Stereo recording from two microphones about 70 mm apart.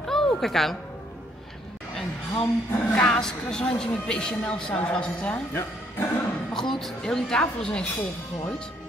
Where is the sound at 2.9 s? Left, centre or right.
Centre.